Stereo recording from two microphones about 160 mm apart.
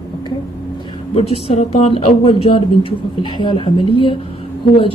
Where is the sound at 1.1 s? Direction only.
40° left (ahead or behind).